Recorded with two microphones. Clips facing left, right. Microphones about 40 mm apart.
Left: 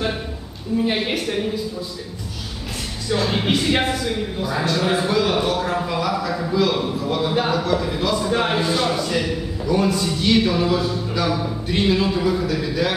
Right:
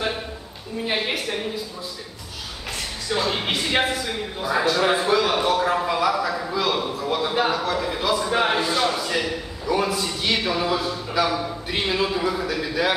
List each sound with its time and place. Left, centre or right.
0.8 s speech: centre
3.1 s speech: centre